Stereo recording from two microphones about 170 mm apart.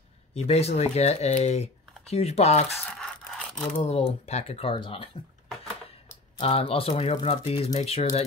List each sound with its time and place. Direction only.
0.3 s speech: 35° left (ahead or behind)
2.8 s a sound: 5° left (ahead or behind)
3.7 s speech: 35° left (ahead or behind)
6.3 s speech: 35° left (ahead or behind)